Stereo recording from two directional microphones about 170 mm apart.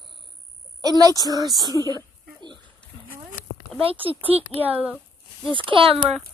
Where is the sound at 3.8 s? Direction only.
35° right (ahead or behind).